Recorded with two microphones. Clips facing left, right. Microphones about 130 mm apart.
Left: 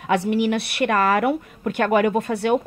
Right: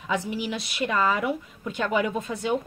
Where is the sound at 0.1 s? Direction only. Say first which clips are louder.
Left 8 dB; 65° left (ahead or behind).